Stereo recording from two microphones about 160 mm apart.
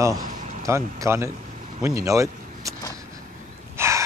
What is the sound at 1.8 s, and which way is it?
Vehicle, 20° right (ahead or behind).